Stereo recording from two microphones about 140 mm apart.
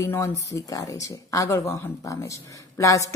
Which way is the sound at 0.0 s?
20° left (ahead or behind).